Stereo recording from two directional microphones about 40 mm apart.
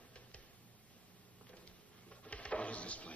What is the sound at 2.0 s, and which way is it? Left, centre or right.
Drawer open or close, left.